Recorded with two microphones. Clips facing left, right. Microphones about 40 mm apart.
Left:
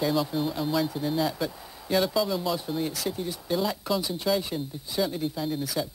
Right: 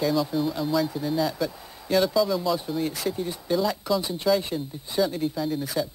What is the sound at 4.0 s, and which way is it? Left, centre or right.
Speech, centre.